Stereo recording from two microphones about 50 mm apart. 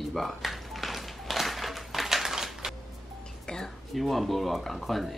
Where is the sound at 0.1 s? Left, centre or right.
Centre.